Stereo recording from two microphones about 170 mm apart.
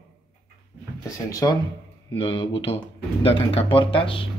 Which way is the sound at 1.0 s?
20° left (ahead or behind).